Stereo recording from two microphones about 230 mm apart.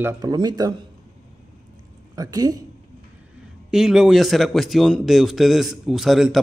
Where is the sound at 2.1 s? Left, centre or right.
Centre.